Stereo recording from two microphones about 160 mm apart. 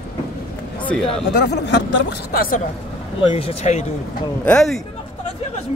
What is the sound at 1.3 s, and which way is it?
Speech, 90° left.